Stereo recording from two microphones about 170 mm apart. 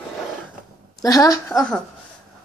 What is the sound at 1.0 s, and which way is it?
Speech, 20° left (ahead or behind).